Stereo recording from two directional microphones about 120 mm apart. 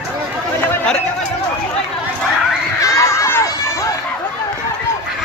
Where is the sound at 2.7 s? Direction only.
25° left (ahead or behind).